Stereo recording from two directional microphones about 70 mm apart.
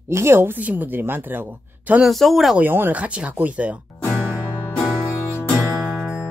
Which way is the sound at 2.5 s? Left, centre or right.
Right.